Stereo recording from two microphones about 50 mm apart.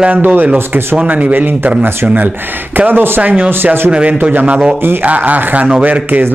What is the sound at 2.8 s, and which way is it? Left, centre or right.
Speech, right.